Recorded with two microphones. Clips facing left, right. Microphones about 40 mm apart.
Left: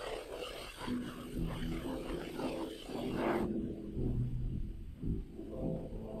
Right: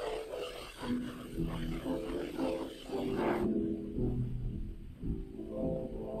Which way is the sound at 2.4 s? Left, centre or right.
Centre.